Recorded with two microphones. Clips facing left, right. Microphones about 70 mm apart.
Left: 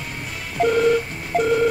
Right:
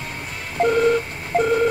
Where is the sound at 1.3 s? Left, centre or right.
Right.